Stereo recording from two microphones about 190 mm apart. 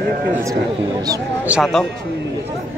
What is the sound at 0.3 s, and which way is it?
Speech, 15° right (ahead or behind).